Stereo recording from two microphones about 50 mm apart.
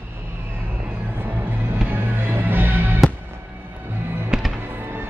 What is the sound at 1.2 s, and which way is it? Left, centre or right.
Music, right.